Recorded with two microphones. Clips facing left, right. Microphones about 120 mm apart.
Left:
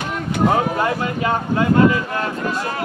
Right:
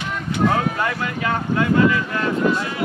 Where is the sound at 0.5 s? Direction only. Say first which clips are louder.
Left 4 dB; 25° left (ahead or behind).